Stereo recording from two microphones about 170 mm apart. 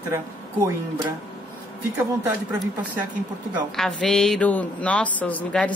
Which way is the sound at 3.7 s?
5° left (ahead or behind).